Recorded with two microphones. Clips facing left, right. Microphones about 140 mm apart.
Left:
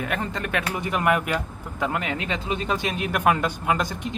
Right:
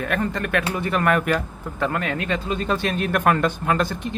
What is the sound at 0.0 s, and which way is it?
Speech, 20° left (ahead or behind).